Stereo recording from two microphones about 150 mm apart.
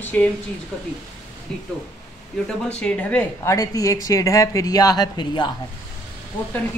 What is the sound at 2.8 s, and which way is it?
Speech, 10° left (ahead or behind).